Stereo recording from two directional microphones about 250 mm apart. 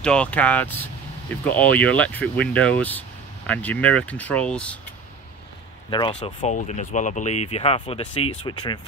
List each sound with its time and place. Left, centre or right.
0.0 s speech: centre
5.9 s speech: centre